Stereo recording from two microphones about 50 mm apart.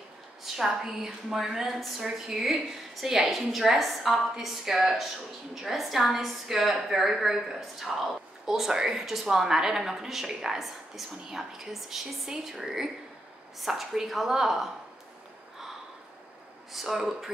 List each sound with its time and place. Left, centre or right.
0.6 s a woman's voice: centre
16.7 s a woman's voice: centre